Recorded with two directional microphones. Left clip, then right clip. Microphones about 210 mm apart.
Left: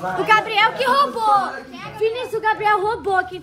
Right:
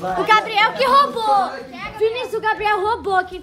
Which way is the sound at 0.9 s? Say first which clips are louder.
Right 1 dB; 50° right (ahead or behind).